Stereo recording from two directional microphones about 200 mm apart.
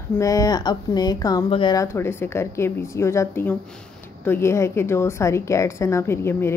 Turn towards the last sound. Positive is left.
turn(degrees=10)  # may be behind; listen again after turning